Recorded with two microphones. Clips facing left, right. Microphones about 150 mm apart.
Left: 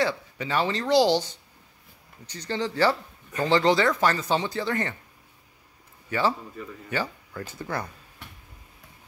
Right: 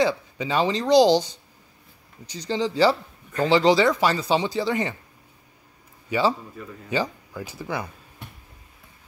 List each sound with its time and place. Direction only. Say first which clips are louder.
0.0 s speech: right 4 dB; 15° right (ahead or behind)
6.0 s speech: right 3 dB; 15° right (ahead or behind)